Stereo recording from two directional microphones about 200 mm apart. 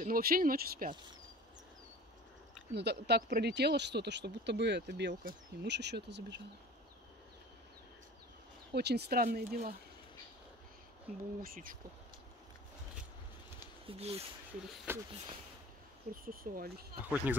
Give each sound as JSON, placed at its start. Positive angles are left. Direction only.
{"t": 0.0, "sound": "speech", "side_deg": -45}
{"t": 2.7, "sound": "speech", "side_deg": -55}
{"t": 8.7, "sound": "speech", "side_deg": -55}
{"t": 11.4, "sound": "speech", "side_deg": -45}
{"t": 13.8, "sound": "speech", "side_deg": -30}
{"t": 14.9, "sound": "speech", "side_deg": -10}
{"t": 16.3, "sound": "speech", "side_deg": -45}
{"t": 17.0, "sound": "speech", "side_deg": -10}